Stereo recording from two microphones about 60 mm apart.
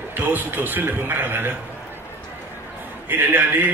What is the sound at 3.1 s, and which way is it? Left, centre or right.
Speech, right.